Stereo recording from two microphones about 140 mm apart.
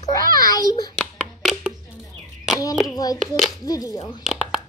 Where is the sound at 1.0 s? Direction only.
5° right (ahead or behind).